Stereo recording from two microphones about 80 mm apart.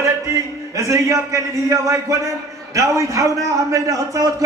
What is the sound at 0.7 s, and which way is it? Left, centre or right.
A man's voice, right.